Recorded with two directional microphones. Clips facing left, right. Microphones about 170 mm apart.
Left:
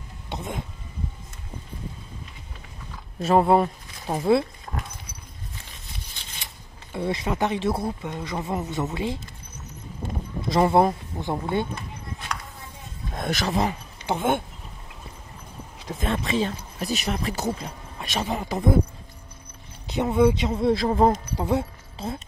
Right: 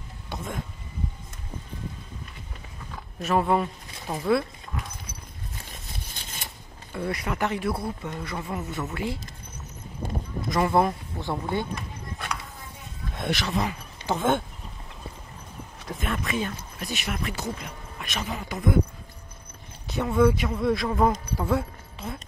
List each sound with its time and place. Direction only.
0.3 s speech: 20° left (ahead or behind)
3.2 s speech: 30° left (ahead or behind)
4.7 s dog: 55° left (ahead or behind)
6.1 s scissors: 45° right (ahead or behind)
6.9 s speech: 20° left (ahead or behind)
10.5 s speech: 25° left (ahead or behind)
13.1 s speech: 45° left (ahead or behind)
14.0 s speech: 10° left (ahead or behind)
16.0 s speech: 30° left (ahead or behind)
19.9 s speech: 20° left (ahead or behind)
21.4 s speech: 20° left (ahead or behind)
21.9 s a sound: 30° left (ahead or behind)